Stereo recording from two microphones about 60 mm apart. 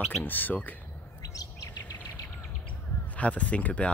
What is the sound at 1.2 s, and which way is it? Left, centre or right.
Chirp, left.